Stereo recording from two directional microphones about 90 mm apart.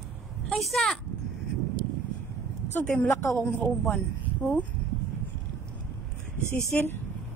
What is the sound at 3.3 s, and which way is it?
Speech, 15° left (ahead or behind).